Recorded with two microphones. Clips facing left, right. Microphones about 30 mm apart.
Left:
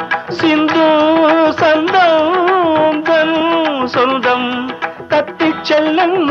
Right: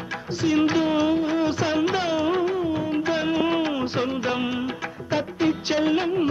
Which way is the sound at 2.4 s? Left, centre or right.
Left.